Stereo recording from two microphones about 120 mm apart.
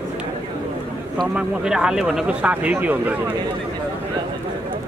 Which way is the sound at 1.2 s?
10° right (ahead or behind).